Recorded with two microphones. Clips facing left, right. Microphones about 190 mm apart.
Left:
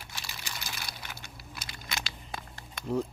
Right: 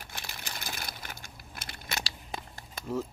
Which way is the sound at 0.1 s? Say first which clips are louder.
Right 1 dB; 55° right (ahead or behind).